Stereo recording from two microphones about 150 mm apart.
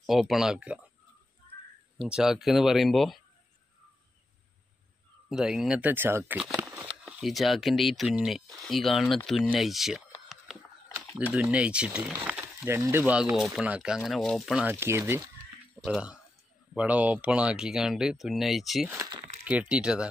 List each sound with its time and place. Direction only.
0.0 s speech: centre (ahead or behind)
2.0 s speech: 5° right (ahead or behind)
5.3 s speech: 5° right (ahead or behind)
10.2 s a sound: centre (ahead or behind)
11.3 s speech: 10° right (ahead or behind)
15.8 s speech: 5° right (ahead or behind)
18.9 s speech: 20° right (ahead or behind)
19.4 s speech: 10° right (ahead or behind)